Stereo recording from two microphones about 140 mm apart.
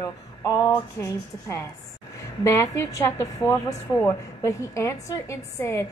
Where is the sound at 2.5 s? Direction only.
20° left (ahead or behind).